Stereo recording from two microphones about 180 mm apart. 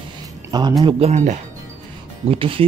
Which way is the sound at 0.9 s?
35° right (ahead or behind).